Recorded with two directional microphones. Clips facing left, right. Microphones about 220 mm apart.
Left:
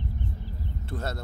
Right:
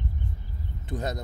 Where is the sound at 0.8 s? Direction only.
15° right (ahead or behind).